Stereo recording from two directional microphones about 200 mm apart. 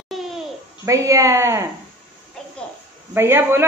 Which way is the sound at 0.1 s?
Centre (ahead or behind).